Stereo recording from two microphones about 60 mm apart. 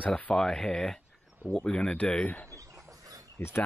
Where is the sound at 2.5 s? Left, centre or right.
Right.